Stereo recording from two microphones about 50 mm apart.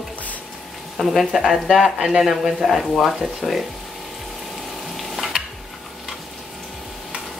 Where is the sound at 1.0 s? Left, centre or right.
Centre.